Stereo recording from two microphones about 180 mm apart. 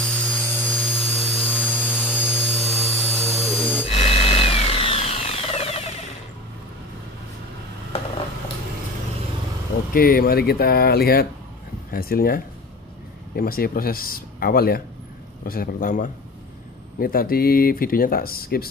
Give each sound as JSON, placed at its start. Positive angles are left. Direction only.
{"t": 0.0, "sound": "tools", "side_deg": 5}
{"t": 2.3, "sound": "a sound", "side_deg": 0}
{"t": 3.9, "sound": "tools", "side_deg": 30}
{"t": 9.9, "sound": "speech", "side_deg": 55}
{"t": 13.4, "sound": "speech", "side_deg": 55}